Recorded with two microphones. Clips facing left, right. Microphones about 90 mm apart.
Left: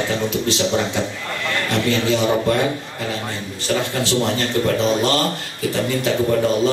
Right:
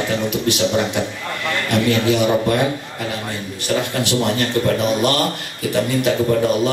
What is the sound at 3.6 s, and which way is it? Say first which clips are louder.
Speech: right 1 dB; 15° right (ahead or behind).